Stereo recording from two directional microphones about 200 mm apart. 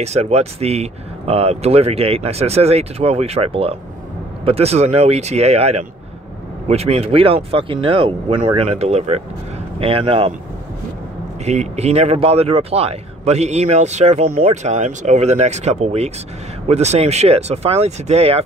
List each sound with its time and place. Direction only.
0.0 s speech: 30° right (ahead or behind)
11.4 s speech: 35° right (ahead or behind)